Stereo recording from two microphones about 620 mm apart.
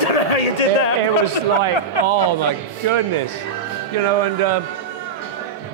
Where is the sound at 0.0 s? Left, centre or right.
Left.